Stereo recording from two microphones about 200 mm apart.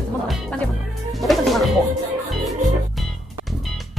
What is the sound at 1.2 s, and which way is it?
Music, centre (ahead or behind).